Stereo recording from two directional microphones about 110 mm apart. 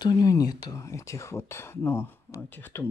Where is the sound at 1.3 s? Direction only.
20° left (ahead or behind).